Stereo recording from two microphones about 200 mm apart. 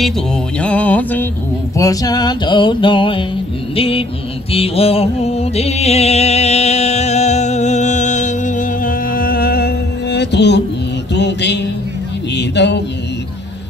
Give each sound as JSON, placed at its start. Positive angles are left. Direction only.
{"t": 0.6, "sound": "music", "side_deg": 5}
{"t": 1.8, "sound": "mantra", "side_deg": 20}
{"t": 4.5, "sound": "music", "side_deg": 30}
{"t": 12.4, "sound": "a sound", "side_deg": 60}